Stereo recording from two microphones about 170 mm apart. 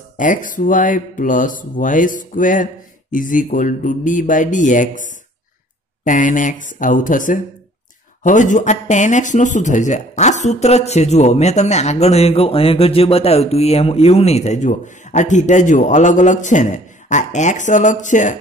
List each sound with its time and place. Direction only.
0.2 s speech: 50° left (ahead or behind)